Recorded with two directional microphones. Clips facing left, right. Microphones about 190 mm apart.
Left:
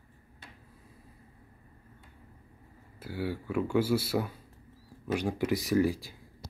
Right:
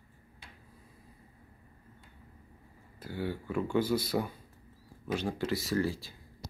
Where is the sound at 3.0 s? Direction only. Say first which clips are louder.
Left 1 dB; 10° left (ahead or behind).